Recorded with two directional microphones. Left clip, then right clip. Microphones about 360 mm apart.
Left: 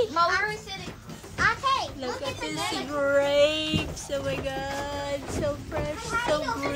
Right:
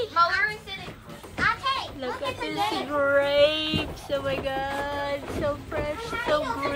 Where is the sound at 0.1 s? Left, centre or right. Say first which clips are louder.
Right 1 dB; left.